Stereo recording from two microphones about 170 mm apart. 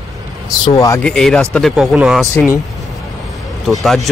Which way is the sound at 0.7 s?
15° left (ahead or behind).